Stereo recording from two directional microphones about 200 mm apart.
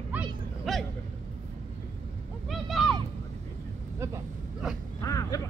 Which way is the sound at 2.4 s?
Centre (ahead or behind).